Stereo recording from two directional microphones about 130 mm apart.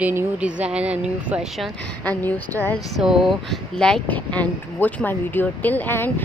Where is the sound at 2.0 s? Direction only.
10° left (ahead or behind).